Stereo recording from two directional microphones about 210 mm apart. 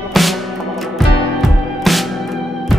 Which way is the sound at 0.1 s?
Centre (ahead or behind).